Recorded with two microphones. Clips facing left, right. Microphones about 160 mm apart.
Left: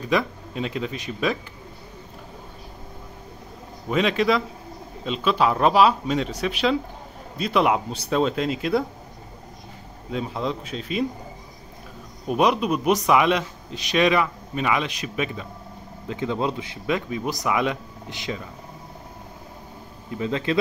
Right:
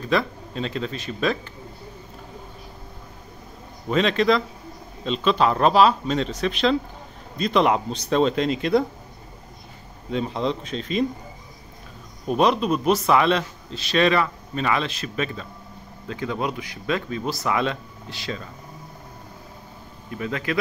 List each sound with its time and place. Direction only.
0.1 s a man's voice: 15° left (ahead or behind)
3.9 s a man's voice: 10° left (ahead or behind)
10.1 s a man's voice: 5° left (ahead or behind)
12.3 s a man's voice: 10° left (ahead or behind)
20.1 s speech: 20° left (ahead or behind)